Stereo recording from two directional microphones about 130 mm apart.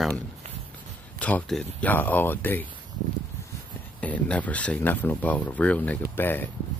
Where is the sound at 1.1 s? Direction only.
10° left (ahead or behind).